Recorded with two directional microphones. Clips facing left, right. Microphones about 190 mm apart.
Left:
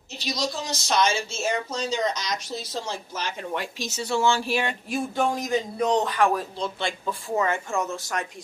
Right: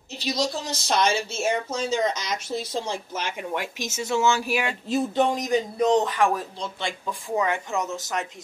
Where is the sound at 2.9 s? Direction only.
15° right (ahead or behind).